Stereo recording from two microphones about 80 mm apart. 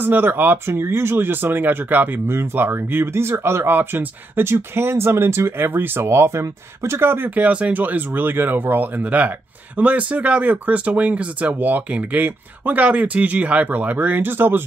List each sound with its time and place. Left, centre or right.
0.0 s speech: right